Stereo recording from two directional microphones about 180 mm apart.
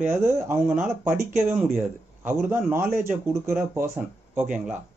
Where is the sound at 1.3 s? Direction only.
40° right (ahead or behind).